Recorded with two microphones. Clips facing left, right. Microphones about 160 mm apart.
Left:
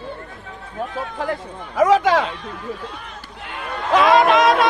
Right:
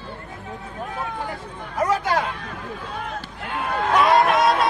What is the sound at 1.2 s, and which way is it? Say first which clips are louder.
Chatter: left 6 dB; 90° left.